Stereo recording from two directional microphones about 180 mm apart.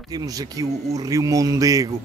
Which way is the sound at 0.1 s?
20° right (ahead or behind).